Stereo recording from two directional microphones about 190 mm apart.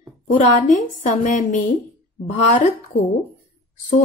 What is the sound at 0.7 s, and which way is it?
Speech, 40° left (ahead or behind).